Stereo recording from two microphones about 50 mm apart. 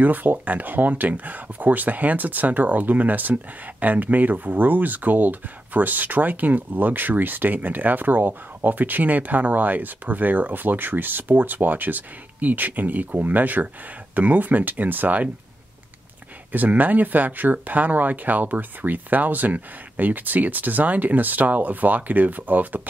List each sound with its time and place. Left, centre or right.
0.0 s speech: right
16.5 s speech: right